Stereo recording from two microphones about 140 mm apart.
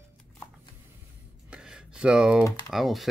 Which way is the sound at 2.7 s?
Centre (ahead or behind).